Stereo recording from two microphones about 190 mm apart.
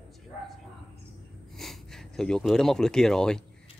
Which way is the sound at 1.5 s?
Centre (ahead or behind).